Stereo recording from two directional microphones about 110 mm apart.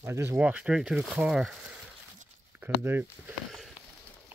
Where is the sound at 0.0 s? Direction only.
25° right (ahead or behind).